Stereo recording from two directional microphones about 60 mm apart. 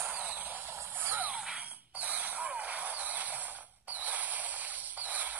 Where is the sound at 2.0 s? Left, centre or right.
Right.